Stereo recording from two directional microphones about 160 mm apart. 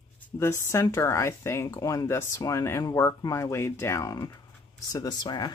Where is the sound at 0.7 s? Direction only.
20° left (ahead or behind).